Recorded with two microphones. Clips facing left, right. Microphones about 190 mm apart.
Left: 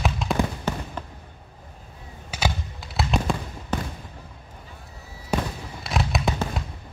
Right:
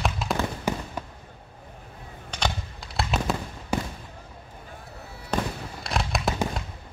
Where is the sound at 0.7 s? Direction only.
10° right (ahead or behind).